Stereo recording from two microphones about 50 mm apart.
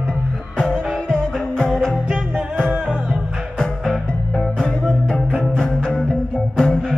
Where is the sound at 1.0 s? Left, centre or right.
Centre.